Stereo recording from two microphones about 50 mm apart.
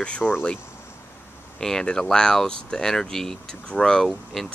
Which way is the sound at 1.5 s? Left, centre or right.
Centre.